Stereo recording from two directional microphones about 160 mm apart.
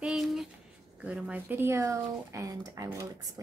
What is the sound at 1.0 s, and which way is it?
Speech, 5° right (ahead or behind).